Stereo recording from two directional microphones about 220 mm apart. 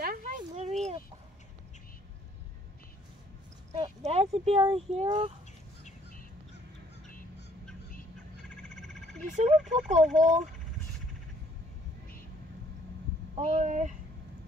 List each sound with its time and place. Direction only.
0.0 s a sound: 40° right (ahead or behind)
3.7 s speech: 30° right (ahead or behind)
7.1 s fowl: 40° left (ahead or behind)
8.4 s frog: centre (ahead or behind)
9.3 s speech: 30° right (ahead or behind)
13.3 s speech: 35° right (ahead or behind)